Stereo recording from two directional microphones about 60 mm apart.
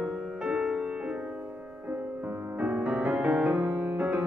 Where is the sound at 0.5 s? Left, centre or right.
Centre.